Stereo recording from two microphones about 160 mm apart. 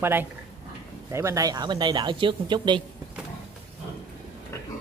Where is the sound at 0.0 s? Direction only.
15° right (ahead or behind); by 2.8 s 30° right (ahead or behind).